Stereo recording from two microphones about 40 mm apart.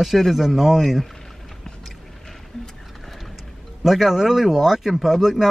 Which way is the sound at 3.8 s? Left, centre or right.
Centre.